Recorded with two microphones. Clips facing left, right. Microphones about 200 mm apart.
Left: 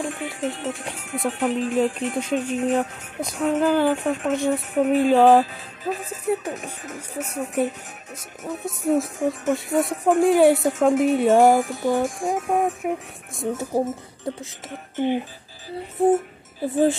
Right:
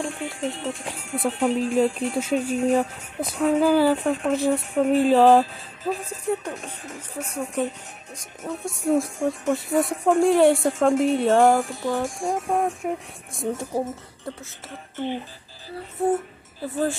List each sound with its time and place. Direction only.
0.0 s speech: 5° left (ahead or behind)
13.7 s speech: 20° left (ahead or behind)